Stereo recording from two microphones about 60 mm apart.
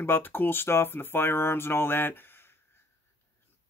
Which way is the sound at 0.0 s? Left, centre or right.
Left.